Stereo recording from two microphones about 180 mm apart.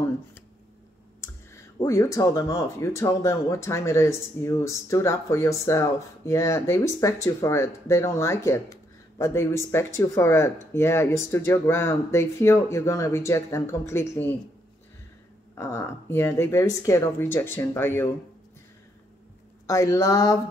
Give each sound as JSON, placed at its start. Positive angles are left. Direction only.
{"t": 1.2, "sound": "speech", "side_deg": 15}
{"t": 15.5, "sound": "speech", "side_deg": 15}
{"t": 19.6, "sound": "speech", "side_deg": 15}